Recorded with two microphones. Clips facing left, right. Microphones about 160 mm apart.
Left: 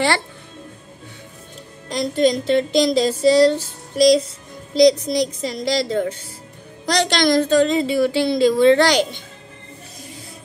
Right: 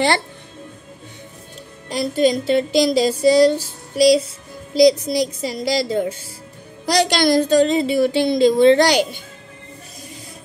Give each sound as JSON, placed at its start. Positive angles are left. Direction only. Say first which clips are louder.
{"t": 1.9, "sound": "speech", "louder": "even", "side_deg": -5}